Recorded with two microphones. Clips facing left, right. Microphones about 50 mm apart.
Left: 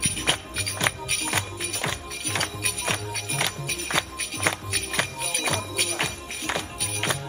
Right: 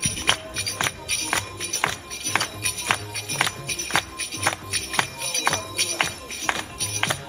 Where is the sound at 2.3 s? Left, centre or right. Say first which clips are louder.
Right 4 dB; right.